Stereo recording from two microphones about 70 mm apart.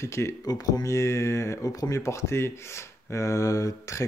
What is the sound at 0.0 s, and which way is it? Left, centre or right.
Speech, left.